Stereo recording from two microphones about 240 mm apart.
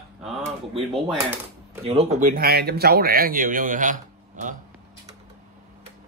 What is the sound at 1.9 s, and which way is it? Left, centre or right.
A man's voice, right.